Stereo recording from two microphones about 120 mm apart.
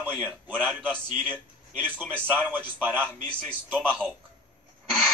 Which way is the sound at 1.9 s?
15° right (ahead or behind).